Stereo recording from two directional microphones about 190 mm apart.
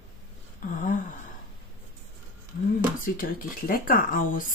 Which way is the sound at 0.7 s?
40° left (ahead or behind).